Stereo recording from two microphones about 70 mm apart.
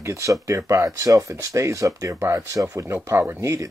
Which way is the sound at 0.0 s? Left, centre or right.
Right.